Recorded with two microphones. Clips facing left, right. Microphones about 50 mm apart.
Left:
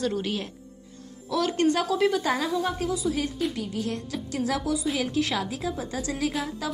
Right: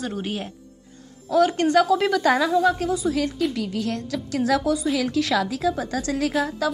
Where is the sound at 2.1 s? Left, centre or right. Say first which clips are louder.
Right 6 dB; right.